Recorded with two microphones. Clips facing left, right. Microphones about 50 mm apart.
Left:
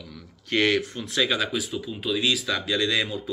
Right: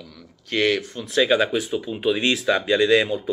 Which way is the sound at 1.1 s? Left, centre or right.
Centre.